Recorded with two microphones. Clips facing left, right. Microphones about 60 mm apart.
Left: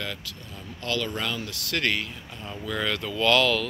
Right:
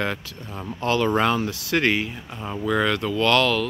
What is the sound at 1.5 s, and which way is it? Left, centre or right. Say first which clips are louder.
Speech: right 6 dB; right.